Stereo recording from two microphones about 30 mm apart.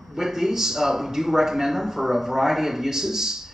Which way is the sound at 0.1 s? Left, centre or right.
Centre.